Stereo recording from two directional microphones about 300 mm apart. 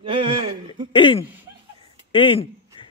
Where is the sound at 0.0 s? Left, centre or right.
Centre.